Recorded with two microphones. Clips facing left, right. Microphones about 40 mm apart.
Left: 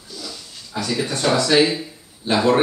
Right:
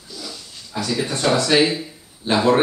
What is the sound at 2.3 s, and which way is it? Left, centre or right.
Speech, right.